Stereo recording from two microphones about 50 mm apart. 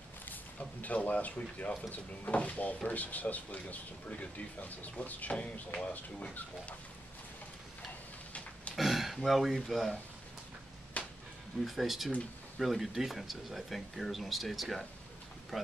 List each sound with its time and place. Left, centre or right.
0.2 s speech: left; by 6.3 s centre
8.3 s pig: left
8.7 s a sound: centre
9.7 s speech: centre
10.9 s a sound: left
11.6 s speech: centre